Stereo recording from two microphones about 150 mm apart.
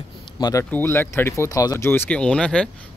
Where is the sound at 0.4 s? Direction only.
20° left (ahead or behind).